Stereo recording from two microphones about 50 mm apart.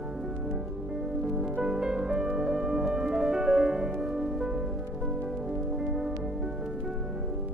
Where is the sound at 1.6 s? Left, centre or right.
Centre.